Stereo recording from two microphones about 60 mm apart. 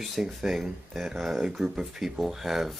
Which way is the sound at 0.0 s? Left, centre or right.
Centre.